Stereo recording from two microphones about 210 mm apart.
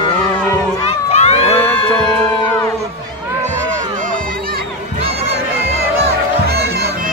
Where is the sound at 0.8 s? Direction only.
30° left (ahead or behind).